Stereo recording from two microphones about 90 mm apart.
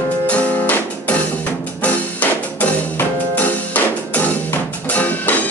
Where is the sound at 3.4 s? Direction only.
20° left (ahead or behind).